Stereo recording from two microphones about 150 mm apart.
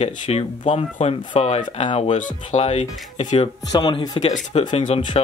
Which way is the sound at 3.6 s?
30° left (ahead or behind).